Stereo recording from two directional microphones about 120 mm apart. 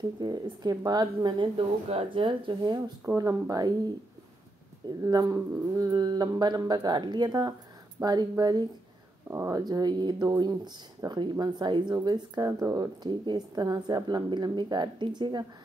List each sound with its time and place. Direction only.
0.2 s speech: 35° right (ahead or behind)
1.9 s speech: 50° right (ahead or behind)
3.2 s speech: 30° right (ahead or behind)
5.0 s speech: 30° right (ahead or behind)
9.3 s speech: 20° right (ahead or behind)
9.6 s speech: 35° right (ahead or behind)